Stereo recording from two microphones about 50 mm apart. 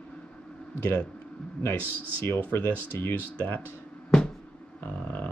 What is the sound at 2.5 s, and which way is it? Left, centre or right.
Speech, left.